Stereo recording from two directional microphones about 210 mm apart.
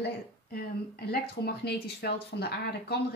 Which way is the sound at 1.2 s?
50° left (ahead or behind).